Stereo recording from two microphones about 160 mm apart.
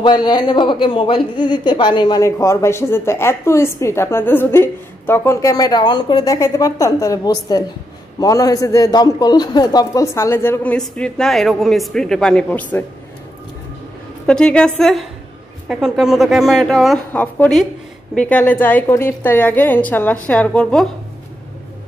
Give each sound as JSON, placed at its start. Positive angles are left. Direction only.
{"t": 0.0, "sound": "a man's voice", "side_deg": 25}
{"t": 14.2, "sound": "a man's voice", "side_deg": 5}